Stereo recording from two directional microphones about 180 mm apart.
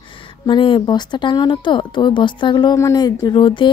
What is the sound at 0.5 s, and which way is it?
Speech, 25° left (ahead or behind).